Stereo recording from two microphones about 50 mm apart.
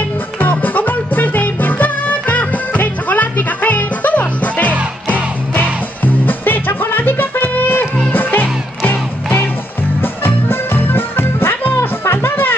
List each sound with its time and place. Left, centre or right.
0.4 s music: left